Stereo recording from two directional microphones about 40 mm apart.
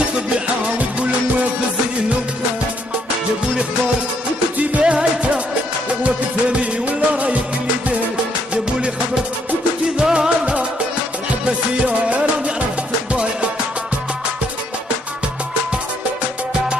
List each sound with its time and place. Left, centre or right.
0.3 s music: right
4.6 s music: right
9.9 s music: centre
10.4 s music: right
11.8 s music: right